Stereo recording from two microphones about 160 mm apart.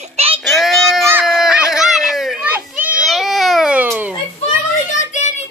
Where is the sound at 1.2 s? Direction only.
Centre (ahead or behind).